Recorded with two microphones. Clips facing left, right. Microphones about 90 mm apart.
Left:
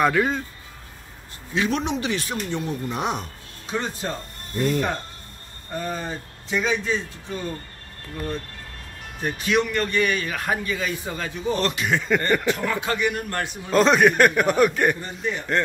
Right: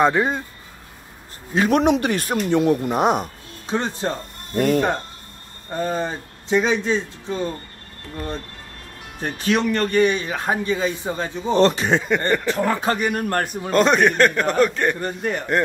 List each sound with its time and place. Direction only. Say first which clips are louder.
0.0 s a man's voice: right 2 dB; 25° right (ahead or behind)
1.5 s speech: right 5 dB; 45° right (ahead or behind)
1.8 s speech: right 7 dB; 55° right (ahead or behind)
2.6 s speech: right 10 dB; 75° right (ahead or behind)
2.9 s speech: right 8 dB; 45° right (ahead or behind)
4.6 s speech: right 5 dB; 50° right (ahead or behind)
5.8 s a man's voice: right 5 dB; 30° right (ahead or behind)
9.2 s speech: right 2 dB; 35° right (ahead or behind)
10.0 s a man's voice: right 4 dB; 25° right (ahead or behind); by 13.5 s 45° right (ahead or behind)
13.5 s a man's voice: left 1 dB; centre (ahead or behind)
15.0 s speech: right 4 dB; 55° right (ahead or behind)